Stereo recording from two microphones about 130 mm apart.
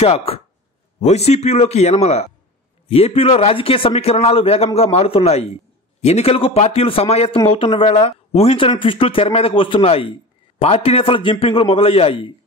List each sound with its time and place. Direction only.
0.0 s a man's voice: 50° left (ahead or behind)